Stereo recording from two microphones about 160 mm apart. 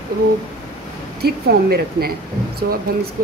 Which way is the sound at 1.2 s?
80° right.